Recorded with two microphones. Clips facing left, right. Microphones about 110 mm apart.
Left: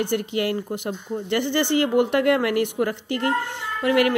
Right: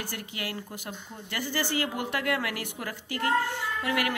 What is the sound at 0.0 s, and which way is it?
Speech, 25° left (ahead or behind).